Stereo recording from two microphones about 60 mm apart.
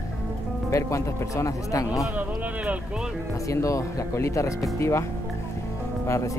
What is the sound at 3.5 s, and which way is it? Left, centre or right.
Speech, left.